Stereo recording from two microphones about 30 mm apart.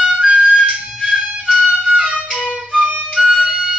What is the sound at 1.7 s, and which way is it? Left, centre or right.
Music, right.